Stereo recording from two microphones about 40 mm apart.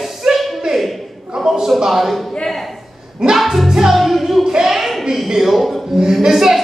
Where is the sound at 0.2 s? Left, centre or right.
Centre.